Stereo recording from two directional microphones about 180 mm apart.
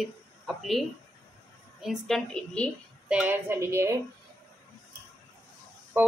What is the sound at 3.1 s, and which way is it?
Speech, 10° right (ahead or behind).